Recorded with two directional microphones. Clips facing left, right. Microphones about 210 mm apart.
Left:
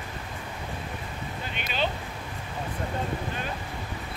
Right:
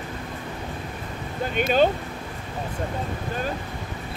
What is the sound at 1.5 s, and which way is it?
Speech, 45° right (ahead or behind).